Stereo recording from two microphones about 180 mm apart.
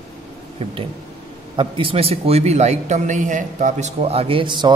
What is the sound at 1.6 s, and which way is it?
Speech, 30° right (ahead or behind).